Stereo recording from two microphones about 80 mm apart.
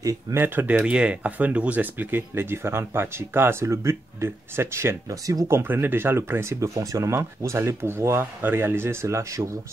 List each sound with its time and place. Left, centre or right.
0.0 s speech: right
0.4 s speech: right
0.7 s speech: centre; by 4.9 s right
5.1 s speech: right
5.5 s speech: right